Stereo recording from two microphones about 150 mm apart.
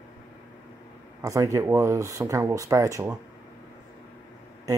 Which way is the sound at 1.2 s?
20° right (ahead or behind).